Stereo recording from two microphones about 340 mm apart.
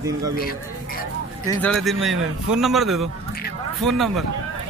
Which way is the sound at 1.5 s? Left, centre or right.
Centre.